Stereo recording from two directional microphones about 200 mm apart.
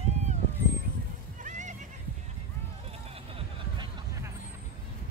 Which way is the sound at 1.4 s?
35° right (ahead or behind).